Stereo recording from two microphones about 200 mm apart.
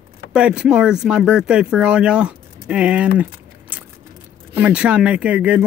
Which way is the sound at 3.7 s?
10° right (ahead or behind).